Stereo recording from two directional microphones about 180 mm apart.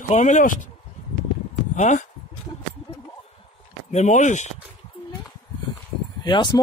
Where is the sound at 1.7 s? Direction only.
40° left (ahead or behind).